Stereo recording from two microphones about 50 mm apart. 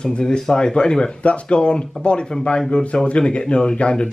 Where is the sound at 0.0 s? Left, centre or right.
Centre.